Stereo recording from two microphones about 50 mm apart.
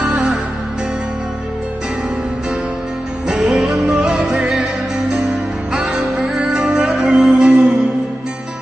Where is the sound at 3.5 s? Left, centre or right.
Centre.